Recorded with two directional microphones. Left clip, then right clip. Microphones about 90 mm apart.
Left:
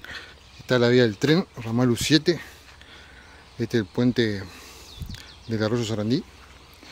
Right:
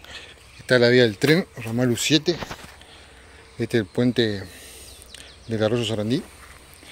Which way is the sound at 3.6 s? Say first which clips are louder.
Right 2 dB; 20° left (ahead or behind).